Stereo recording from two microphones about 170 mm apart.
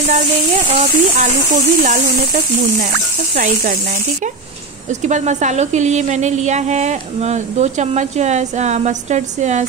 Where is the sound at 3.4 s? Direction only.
55° right (ahead or behind).